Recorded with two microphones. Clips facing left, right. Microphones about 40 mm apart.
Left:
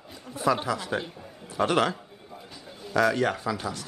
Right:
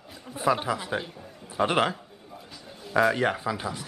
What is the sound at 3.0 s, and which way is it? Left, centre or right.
Speech, centre.